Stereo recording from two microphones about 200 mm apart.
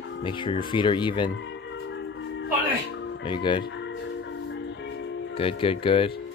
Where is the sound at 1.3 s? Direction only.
65° left (ahead or behind).